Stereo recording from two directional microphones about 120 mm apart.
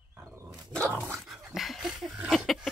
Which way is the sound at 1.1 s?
Centre (ahead or behind).